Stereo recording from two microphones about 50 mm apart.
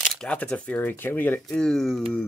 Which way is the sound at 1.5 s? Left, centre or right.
Centre.